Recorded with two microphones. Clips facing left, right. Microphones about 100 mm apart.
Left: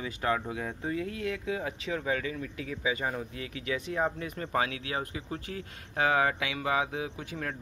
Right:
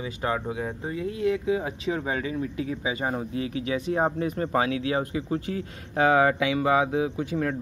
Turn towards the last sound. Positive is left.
turn(degrees=-30)  # may be behind; listen again after turning